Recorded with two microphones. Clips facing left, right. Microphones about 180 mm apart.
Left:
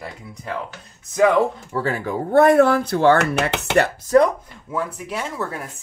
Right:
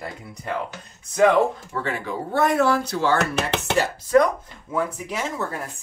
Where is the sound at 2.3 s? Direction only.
55° left (ahead or behind).